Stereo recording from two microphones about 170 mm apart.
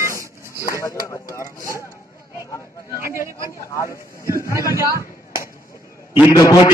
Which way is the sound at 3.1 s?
15° right (ahead or behind).